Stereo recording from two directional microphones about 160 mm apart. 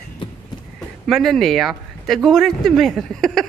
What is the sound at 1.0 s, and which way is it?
Speech, centre (ahead or behind).